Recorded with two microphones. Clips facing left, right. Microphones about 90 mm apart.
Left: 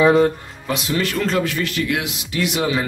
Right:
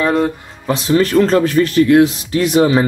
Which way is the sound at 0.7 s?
35° right (ahead or behind).